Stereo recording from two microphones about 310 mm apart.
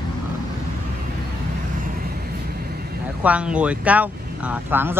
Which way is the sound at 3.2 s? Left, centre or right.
Centre.